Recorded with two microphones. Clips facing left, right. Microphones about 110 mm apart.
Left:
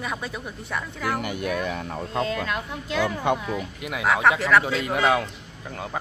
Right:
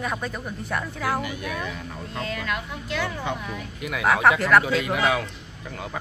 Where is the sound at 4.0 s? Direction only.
5° right (ahead or behind).